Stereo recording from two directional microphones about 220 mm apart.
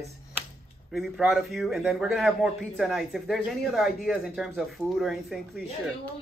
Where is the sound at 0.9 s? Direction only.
Centre (ahead or behind).